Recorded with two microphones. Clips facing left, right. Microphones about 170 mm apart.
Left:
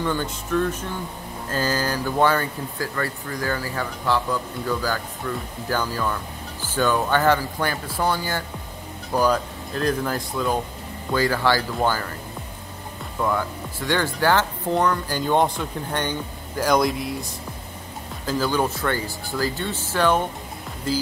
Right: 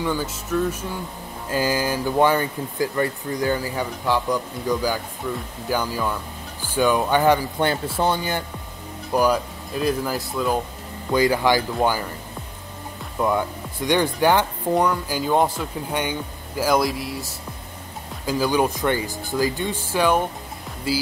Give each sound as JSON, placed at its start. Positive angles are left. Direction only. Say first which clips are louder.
{"t": 0.0, "sound": "speech", "louder": "even", "side_deg": -5}
{"t": 11.1, "sound": "speech", "louder": "right 2 dB", "side_deg": -15}
{"t": 13.2, "sound": "speech", "louder": "right 2 dB", "side_deg": -20}
{"t": 18.2, "sound": "speech", "louder": "right 2 dB", "side_deg": -15}